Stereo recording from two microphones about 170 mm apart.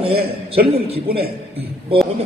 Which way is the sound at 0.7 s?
35° right (ahead or behind).